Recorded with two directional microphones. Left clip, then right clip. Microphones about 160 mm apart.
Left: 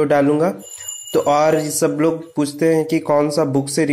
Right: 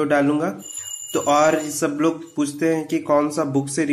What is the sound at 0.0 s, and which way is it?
Speech, 30° left (ahead or behind).